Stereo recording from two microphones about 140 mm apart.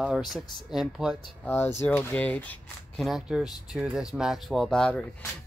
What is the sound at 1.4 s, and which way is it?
Speech, 15° left (ahead or behind).